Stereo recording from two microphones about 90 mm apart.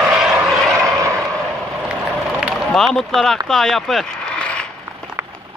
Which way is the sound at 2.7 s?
5° left (ahead or behind).